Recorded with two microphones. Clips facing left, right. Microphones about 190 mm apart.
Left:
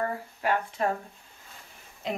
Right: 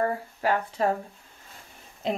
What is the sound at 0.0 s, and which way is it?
Speech, 30° right (ahead or behind).